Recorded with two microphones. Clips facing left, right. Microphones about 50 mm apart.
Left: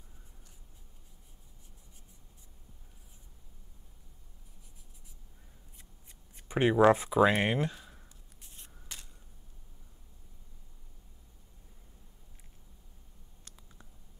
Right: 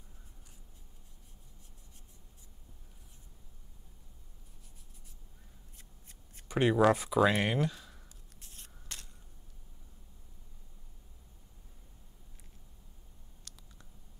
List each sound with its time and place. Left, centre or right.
6.3 s speech: centre
7.7 s a sound: centre
8.5 s scissors: centre
13.5 s clicking: left